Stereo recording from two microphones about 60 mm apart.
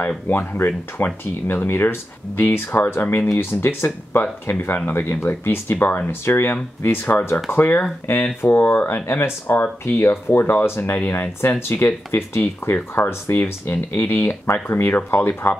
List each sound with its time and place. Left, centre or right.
0.3 s speech: left